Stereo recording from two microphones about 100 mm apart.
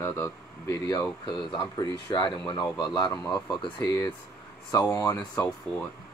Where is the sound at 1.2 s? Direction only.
55° left (ahead or behind).